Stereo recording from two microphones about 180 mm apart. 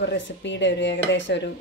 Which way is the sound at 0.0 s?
80° left.